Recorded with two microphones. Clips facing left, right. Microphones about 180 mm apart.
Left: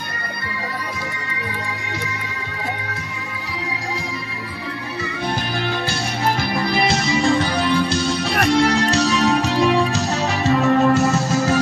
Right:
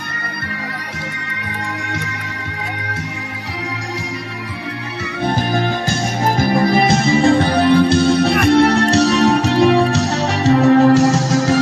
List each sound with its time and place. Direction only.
5.2 s music: 50° right (ahead or behind); by 11.6 s 90° right